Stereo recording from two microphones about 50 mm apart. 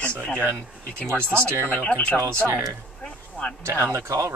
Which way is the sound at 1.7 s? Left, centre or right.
Left.